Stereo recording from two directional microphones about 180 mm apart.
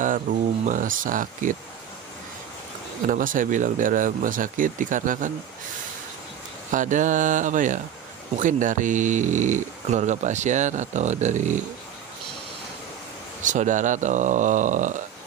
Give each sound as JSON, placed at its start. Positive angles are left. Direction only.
{"t": 0.7, "sound": "speech", "side_deg": -50}
{"t": 3.1, "sound": "speech", "side_deg": -50}
{"t": 6.7, "sound": "speech", "side_deg": -45}
{"t": 13.4, "sound": "speech", "side_deg": -45}